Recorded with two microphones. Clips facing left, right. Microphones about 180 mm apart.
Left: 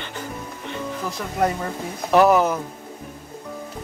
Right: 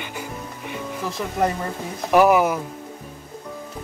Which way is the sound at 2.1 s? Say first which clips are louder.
Even; 10° right (ahead or behind).